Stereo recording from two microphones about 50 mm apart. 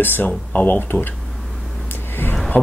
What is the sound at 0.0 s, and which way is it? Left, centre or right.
Speech, left.